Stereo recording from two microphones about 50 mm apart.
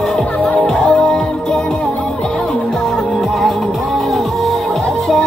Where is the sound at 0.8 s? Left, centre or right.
Left.